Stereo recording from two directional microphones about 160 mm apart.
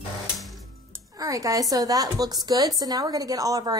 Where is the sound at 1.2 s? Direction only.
20° right (ahead or behind).